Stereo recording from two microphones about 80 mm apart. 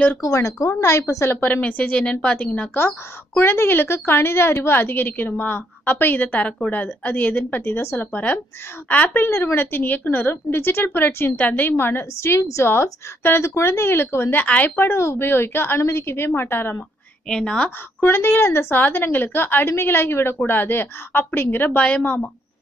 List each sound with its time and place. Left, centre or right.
0.2 s a woman's voice: left
1.4 s a woman's voice: centre
14.4 s a woman's voice: centre
17.3 s a woman's voice: centre
18.0 s a woman's voice: left
21.7 s a woman's voice: centre